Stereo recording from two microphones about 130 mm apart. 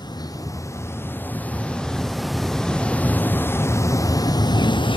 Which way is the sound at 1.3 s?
10° left (ahead or behind).